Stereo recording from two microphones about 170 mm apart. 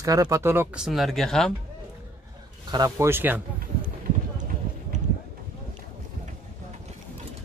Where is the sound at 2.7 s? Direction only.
20° right (ahead or behind).